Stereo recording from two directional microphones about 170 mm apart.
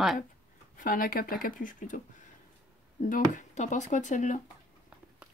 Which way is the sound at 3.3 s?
45° left (ahead or behind).